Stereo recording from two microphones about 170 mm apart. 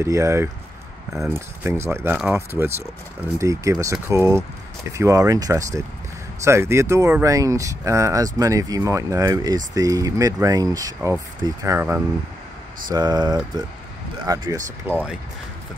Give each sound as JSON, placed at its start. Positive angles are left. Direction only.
{"t": 0.0, "sound": "speech", "side_deg": -15}